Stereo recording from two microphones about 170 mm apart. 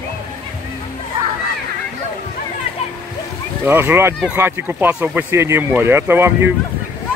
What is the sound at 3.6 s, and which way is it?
Speech, 15° right (ahead or behind).